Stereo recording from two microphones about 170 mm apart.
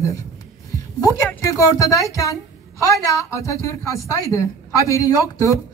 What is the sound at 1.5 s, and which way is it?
Speech, 20° left (ahead or behind).